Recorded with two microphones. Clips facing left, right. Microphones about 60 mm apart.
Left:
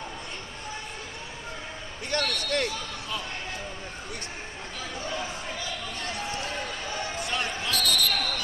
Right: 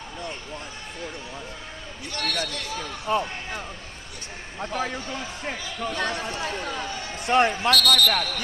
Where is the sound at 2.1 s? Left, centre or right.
Left.